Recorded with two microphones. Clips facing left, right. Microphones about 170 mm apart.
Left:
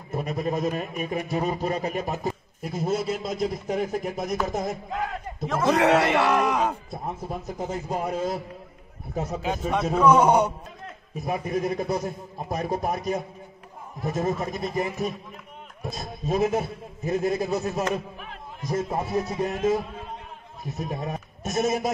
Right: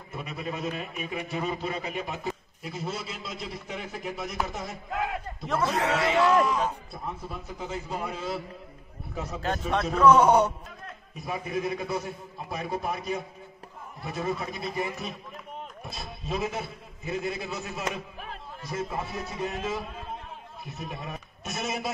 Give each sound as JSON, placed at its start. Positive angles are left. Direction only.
{"t": 0.1, "sound": "a man's voice", "side_deg": 40}
{"t": 5.7, "sound": "speech", "side_deg": 75}
{"t": 6.9, "sound": "a man's voice", "side_deg": 45}
{"t": 9.9, "sound": "a man's voice", "side_deg": 10}
{"t": 11.2, "sound": "a man's voice", "side_deg": 45}